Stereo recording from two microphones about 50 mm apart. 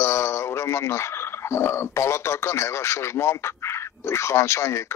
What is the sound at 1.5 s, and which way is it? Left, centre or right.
Speech, left.